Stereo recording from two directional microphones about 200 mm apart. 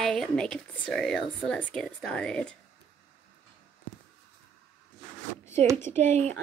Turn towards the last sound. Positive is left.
turn(degrees=-35)  # may be behind; listen again after turning